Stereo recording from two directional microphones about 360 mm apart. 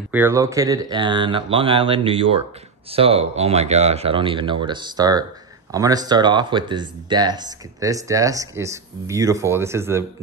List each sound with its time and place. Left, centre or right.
0.1 s speech: centre